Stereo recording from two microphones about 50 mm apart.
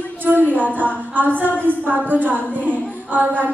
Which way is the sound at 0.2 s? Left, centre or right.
Right.